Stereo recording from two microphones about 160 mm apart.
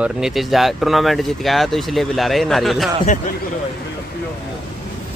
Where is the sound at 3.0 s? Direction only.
55° left (ahead or behind).